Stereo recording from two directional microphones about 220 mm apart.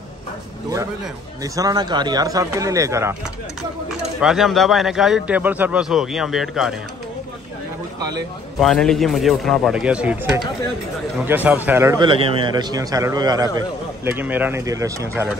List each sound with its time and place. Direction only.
1.4 s a man's voice: 15° right (ahead or behind)
4.2 s a man's voice: centre (ahead or behind)
8.5 s a man's voice: centre (ahead or behind); by 15.2 s 15° right (ahead or behind)